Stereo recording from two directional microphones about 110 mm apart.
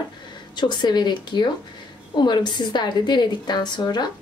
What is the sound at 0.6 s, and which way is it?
A woman's voice, 40° left (ahead or behind).